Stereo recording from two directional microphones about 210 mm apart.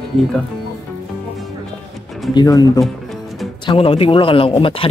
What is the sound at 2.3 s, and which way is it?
Speech, 15° left (ahead or behind).